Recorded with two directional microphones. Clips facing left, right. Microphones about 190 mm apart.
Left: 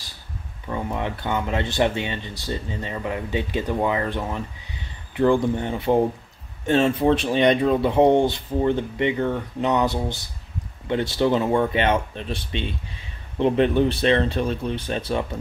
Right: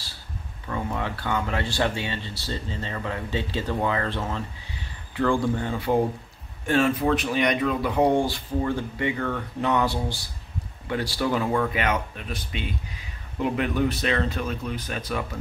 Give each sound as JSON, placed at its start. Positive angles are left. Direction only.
{"t": 0.7, "sound": "speech", "side_deg": 20}